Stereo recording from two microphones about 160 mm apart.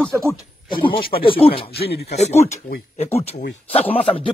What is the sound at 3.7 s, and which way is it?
Speech, 40° left (ahead or behind).